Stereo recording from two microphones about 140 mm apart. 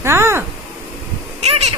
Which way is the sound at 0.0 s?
20° right (ahead or behind).